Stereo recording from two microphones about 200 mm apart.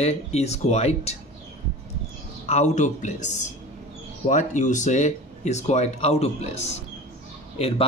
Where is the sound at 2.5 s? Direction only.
35° left (ahead or behind).